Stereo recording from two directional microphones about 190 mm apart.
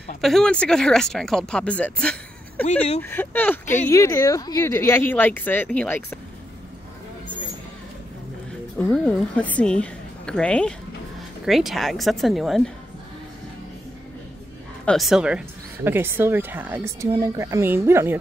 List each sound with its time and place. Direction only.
0.2 s speech: centre (ahead or behind)
2.6 s speech: 35° left (ahead or behind)
3.0 s a woman's voice: 10° left (ahead or behind)
8.7 s speech: 5° left (ahead or behind)
14.9 s speech: centre (ahead or behind)